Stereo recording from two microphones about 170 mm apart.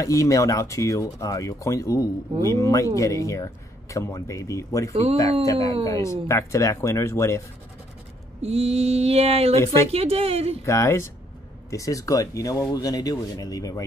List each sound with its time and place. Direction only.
0.0 s speech: 20° left (ahead or behind)
8.4 s mantra: 35° right (ahead or behind)
10.6 s speech: 15° left (ahead or behind)